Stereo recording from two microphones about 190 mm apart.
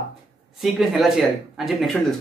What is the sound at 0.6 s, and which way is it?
Speech, centre (ahead or behind).